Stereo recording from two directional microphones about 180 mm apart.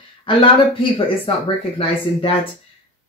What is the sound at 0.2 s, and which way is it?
Speech, 30° left (ahead or behind).